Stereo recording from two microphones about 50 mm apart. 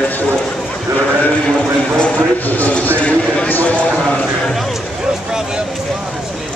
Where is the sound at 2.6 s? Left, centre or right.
Left.